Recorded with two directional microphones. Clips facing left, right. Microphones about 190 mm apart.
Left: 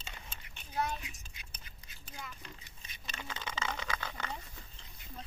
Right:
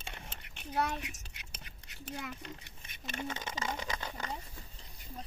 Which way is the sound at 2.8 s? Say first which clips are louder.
Right 7 dB; 55° right (ahead or behind).